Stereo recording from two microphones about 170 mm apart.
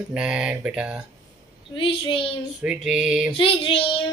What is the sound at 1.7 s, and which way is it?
Speech, 30° left (ahead or behind).